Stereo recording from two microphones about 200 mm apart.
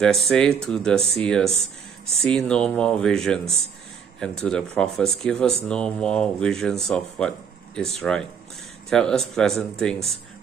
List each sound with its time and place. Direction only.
0.0 s speech: centre (ahead or behind)